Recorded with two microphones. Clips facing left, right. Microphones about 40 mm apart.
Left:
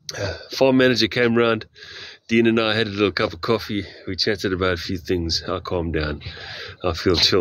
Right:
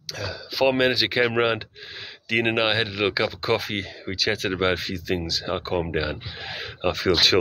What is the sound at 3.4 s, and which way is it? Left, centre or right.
Speech, right.